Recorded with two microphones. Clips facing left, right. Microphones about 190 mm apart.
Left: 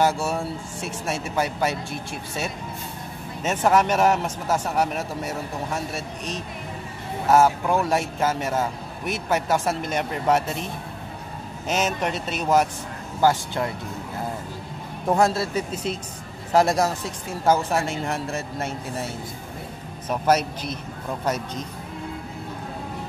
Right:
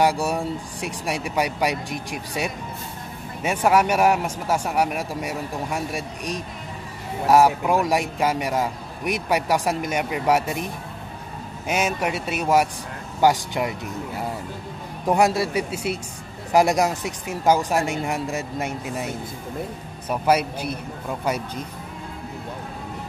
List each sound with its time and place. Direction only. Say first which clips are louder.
0.0 s a man's voice: right 1 dB; 15° right (ahead or behind)
15.0 s a man's voice: right 1 dB; 15° right (ahead or behind)